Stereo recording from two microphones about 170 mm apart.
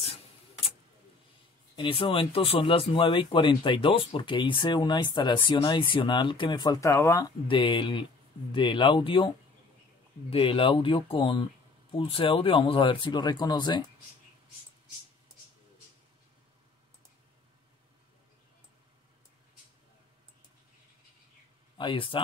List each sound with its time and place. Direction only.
1.8 s speech: 30° left (ahead or behind)
7.4 s speech: 30° left (ahead or behind)
10.3 s speech: 30° left (ahead or behind)
21.7 s speech: 30° left (ahead or behind)